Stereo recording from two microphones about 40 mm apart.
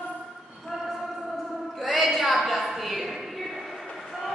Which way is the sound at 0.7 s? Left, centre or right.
Centre.